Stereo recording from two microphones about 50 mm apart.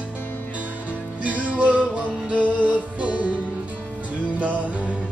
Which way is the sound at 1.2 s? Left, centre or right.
Right.